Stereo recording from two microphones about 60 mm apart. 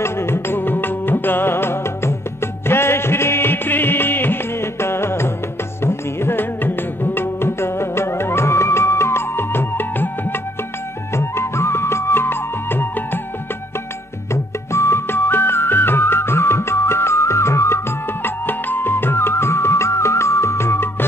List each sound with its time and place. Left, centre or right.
0.0 s music: left
11.1 s music: left
14.3 s music: left